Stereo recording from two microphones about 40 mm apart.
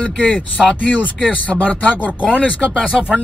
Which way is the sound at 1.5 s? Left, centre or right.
Left.